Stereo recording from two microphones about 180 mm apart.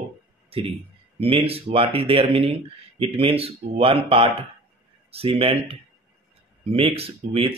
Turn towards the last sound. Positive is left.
turn(degrees=-30)  # may be behind; listen again after turning